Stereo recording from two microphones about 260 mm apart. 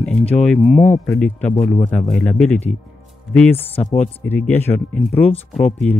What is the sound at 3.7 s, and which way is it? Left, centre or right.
Speech, left.